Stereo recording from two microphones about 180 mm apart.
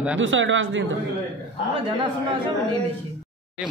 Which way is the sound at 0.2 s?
90° right.